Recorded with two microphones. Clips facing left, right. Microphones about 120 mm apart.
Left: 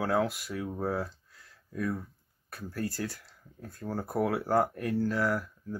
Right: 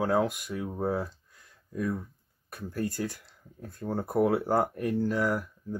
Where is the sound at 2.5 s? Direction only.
20° right (ahead or behind).